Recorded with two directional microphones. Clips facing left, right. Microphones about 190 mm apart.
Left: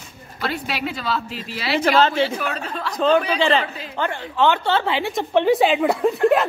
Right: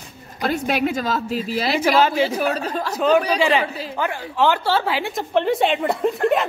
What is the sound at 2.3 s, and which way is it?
Speech, 40° right (ahead or behind).